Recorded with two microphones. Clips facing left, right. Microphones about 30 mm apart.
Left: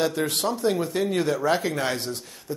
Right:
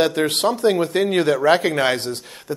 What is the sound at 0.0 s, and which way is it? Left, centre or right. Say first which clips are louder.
Speech: right 6 dB; right.